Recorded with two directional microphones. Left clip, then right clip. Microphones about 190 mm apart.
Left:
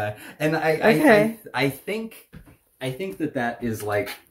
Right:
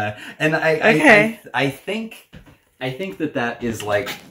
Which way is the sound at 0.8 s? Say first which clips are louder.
Right 4 dB; 5° left (ahead or behind).